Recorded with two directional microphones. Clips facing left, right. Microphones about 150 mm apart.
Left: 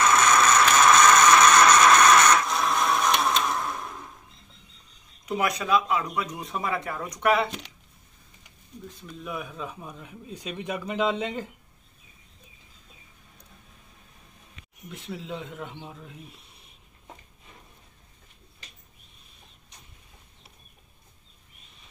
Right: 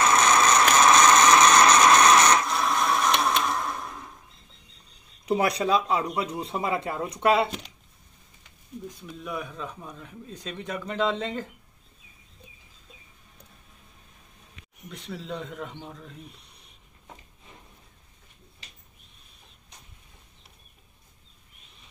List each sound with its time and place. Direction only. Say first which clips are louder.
0.0 s a sound: even; 30° right (ahead or behind)
2.4 s printer: even; centre (ahead or behind)
5.2 s speech: right 3 dB; 30° right (ahead or behind)
9.2 s a man's voice: even; 5° left (ahead or behind)
14.9 s speech: even; 5° left (ahead or behind)